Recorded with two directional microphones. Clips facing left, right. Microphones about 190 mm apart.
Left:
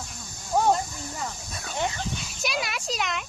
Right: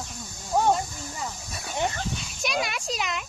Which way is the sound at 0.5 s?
Centre (ahead or behind).